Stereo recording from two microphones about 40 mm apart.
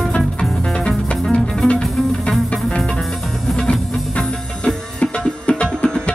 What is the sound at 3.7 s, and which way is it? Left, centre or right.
Music, left.